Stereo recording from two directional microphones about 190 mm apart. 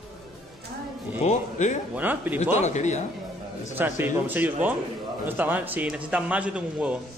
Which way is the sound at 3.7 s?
10° right (ahead or behind).